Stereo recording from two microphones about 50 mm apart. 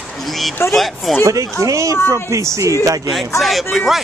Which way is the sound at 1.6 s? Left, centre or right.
Right.